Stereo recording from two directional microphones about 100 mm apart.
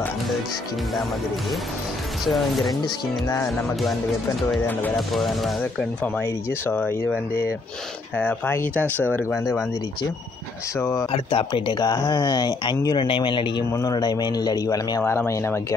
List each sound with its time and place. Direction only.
2.2 s speech: centre (ahead or behind)
4.9 s speech: centre (ahead or behind)
6.2 s speech: 20° left (ahead or behind)
8.2 s speech: 20° left (ahead or behind)
10.8 s speech: 30° left (ahead or behind)
11.1 s speech: 70° left (ahead or behind); by 13.7 s 50° left (ahead or behind)
13.7 s speech: 35° left (ahead or behind)
15.0 s speech: 25° left (ahead or behind)